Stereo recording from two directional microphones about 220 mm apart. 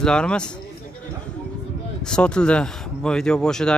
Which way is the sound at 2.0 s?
5° left (ahead or behind).